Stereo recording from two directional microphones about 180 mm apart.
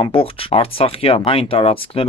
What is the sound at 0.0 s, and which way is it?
Speech, 30° left (ahead or behind).